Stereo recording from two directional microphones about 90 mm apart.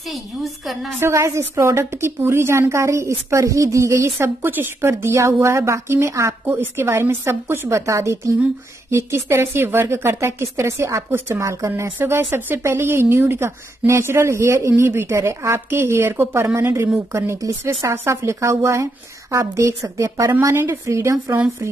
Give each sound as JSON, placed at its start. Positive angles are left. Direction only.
{"t": 0.1, "sound": "a woman's voice", "side_deg": 0}
{"t": 0.9, "sound": "a woman's voice", "side_deg": -30}
{"t": 6.4, "sound": "a woman's voice", "side_deg": -20}
{"t": 20.3, "sound": "a woman's voice", "side_deg": -25}